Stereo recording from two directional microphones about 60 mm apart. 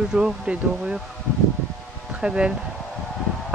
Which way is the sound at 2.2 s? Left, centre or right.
Centre.